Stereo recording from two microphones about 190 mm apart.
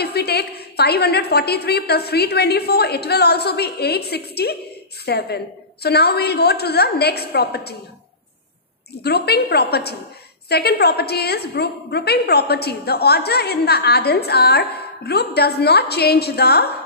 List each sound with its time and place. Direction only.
0.0 s a woman's voice: 60° left (ahead or behind)
9.0 s a woman's voice: 55° left (ahead or behind)